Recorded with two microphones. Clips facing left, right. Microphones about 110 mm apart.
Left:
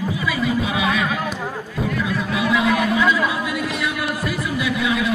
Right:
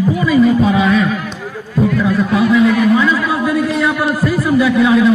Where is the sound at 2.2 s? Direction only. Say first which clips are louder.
Right 8 dB; 40° right (ahead or behind).